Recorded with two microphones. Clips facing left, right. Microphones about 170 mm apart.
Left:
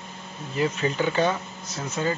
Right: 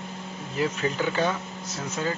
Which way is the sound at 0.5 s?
Centre (ahead or behind).